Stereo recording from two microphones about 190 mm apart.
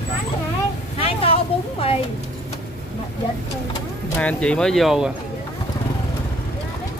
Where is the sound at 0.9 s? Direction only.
30° left (ahead or behind).